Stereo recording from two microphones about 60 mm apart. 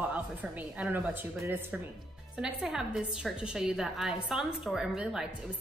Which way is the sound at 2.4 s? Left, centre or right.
Centre.